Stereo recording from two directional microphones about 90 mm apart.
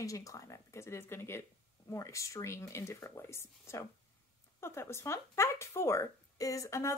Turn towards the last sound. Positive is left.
turn(degrees=35)  # may be behind; listen again after turning